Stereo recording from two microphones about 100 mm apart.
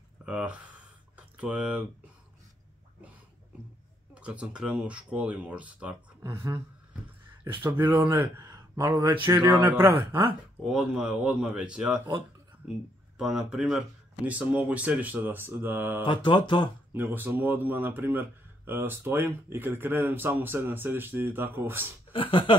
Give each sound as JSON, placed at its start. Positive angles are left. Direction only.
{"t": 0.2, "sound": "speech", "side_deg": -10}
{"t": 1.1, "sound": "a sound", "side_deg": -10}
{"t": 4.1, "sound": "speech", "side_deg": -10}
{"t": 6.3, "sound": "speech", "side_deg": -35}
{"t": 8.1, "sound": "speech", "side_deg": -25}
{"t": 8.5, "sound": "a sound", "side_deg": -40}
{"t": 9.2, "sound": "speech", "side_deg": -20}
{"t": 10.6, "sound": "speech", "side_deg": -5}
{"t": 16.0, "sound": "mantra", "side_deg": 55}
{"t": 16.9, "sound": "speech", "side_deg": -20}
{"t": 22.1, "sound": "speech", "side_deg": 60}